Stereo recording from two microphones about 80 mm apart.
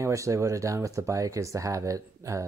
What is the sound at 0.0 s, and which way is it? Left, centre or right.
Speech, right.